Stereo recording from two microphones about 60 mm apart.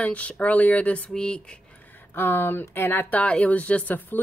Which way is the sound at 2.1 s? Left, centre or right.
Left.